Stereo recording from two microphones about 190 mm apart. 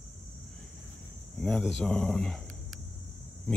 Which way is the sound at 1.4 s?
5° left (ahead or behind).